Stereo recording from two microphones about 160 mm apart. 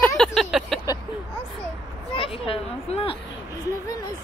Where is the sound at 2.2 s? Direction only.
35° left (ahead or behind).